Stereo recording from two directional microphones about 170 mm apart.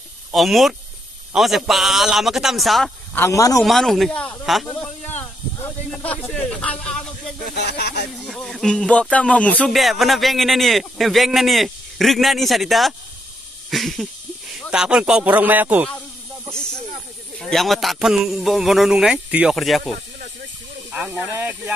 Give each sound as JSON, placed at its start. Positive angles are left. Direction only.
{"t": 0.3, "sound": "speech", "side_deg": 0}
{"t": 3.2, "sound": "a man's voice", "side_deg": 20}
{"t": 3.6, "sound": "speech", "side_deg": 0}
{"t": 7.4, "sound": "speech", "side_deg": 70}
{"t": 8.2, "sound": "speech", "side_deg": 0}
{"t": 13.7, "sound": "a sound", "side_deg": 0}
{"t": 14.7, "sound": "speech", "side_deg": -5}
{"t": 17.4, "sound": "speech", "side_deg": 0}
{"t": 20.9, "sound": "speech", "side_deg": -10}